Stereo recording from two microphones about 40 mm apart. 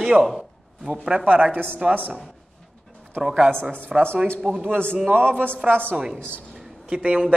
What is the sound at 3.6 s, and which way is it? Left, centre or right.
Speech, right.